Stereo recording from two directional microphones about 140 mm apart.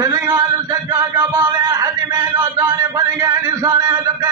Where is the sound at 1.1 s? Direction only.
20° right (ahead or behind).